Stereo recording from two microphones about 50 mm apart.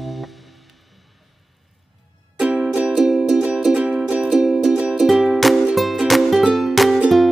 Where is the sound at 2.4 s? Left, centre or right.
Centre.